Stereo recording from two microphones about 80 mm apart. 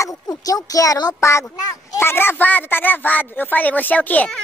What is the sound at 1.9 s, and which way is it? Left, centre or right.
Speech, left.